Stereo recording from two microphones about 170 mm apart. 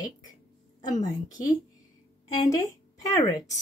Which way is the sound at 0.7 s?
25° left (ahead or behind).